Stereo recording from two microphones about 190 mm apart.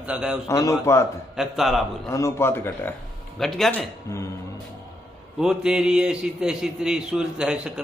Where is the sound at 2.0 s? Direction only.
15° left (ahead or behind); by 3.9 s centre (ahead or behind).